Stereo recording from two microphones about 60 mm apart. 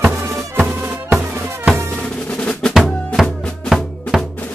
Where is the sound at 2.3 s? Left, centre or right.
Centre.